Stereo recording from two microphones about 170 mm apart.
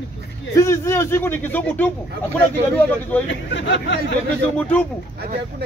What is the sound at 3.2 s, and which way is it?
Speech, 90° left.